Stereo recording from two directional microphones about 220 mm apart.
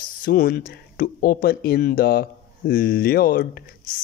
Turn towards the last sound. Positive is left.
turn(degrees=45)  # may be behind; listen again after turning